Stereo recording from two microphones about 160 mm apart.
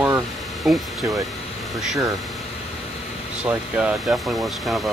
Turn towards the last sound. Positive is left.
turn(degrees=0)  # may be behind; listen again after turning